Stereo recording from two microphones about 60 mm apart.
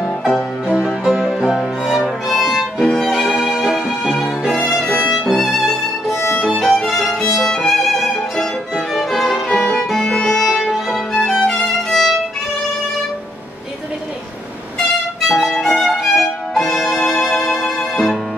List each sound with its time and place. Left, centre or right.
0.0 s music: centre
0.7 s music: centre
1.0 s music: centre
4.6 s violin: centre
10.1 s music: centre
10.4 s music: centre
15.2 s music: centre
15.5 s violin: centre